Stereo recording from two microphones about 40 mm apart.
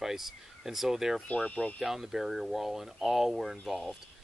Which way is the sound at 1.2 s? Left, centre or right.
Left.